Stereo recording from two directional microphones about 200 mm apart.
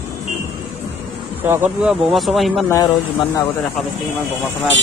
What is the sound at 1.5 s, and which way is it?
Speech, 5° right (ahead or behind).